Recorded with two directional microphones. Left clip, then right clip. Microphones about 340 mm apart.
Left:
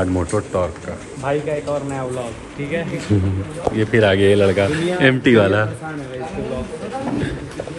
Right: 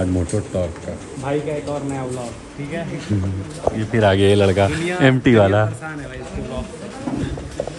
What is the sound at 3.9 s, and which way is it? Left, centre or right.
Speech, right.